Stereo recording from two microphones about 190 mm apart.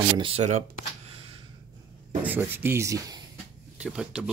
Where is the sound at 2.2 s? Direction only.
10° right (ahead or behind).